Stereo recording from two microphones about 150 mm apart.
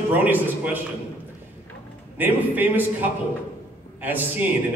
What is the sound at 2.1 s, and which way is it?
A man's voice, 10° right (ahead or behind).